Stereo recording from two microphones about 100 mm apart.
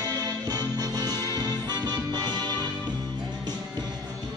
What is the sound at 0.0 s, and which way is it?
Music, 35° right (ahead or behind).